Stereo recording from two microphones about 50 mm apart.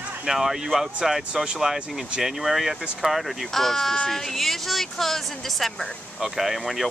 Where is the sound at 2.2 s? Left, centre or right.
Centre.